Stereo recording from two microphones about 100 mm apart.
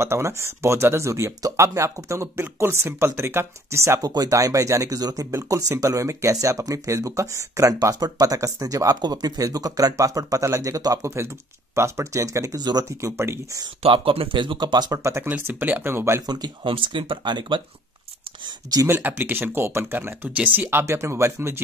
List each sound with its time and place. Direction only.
0.0 s speech: 25° right (ahead or behind)
13.8 s speech: 65° right (ahead or behind); by 15.0 s 45° right (ahead or behind)
15.2 s speech: 15° right (ahead or behind)
16.2 s speech: 45° right (ahead or behind)
18.9 s speech: 20° right (ahead or behind)